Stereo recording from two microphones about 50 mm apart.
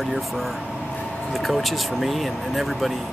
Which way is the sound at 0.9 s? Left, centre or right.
Left.